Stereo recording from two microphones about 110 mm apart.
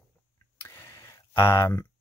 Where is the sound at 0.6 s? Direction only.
25° left (ahead or behind).